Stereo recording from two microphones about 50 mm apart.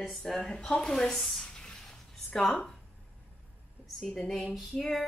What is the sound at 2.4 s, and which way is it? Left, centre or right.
Speech, centre.